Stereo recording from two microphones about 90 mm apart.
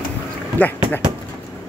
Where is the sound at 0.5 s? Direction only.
20° left (ahead or behind).